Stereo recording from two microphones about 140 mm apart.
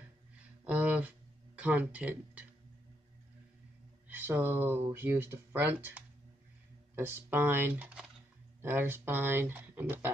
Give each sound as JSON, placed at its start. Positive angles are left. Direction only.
{"t": 0.7, "sound": "a sound", "side_deg": -10}
{"t": 1.6, "sound": "speech", "side_deg": -10}
{"t": 4.1, "sound": "speech", "side_deg": -15}